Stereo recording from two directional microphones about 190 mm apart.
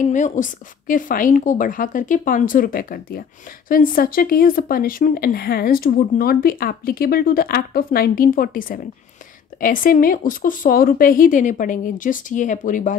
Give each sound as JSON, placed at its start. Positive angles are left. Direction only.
{"t": 0.1, "sound": "a woman's voice", "side_deg": 40}